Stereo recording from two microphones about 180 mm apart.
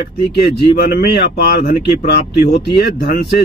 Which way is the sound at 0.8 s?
65° left (ahead or behind).